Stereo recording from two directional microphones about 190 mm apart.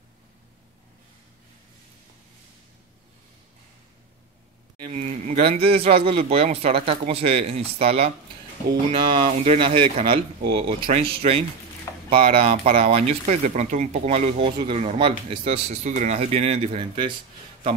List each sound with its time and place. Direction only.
4.8 s speech: 35° right (ahead or behind)
9.2 s speech: 30° right (ahead or behind)